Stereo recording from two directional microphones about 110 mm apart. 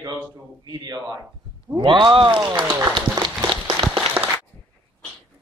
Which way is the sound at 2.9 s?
45° right (ahead or behind).